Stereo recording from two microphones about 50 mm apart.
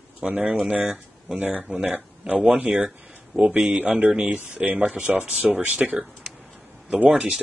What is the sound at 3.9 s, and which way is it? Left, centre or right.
Speech, right.